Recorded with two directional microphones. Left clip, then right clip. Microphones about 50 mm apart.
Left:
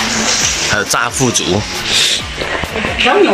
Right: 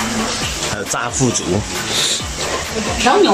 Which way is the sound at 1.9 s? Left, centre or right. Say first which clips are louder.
Left 6 dB; right.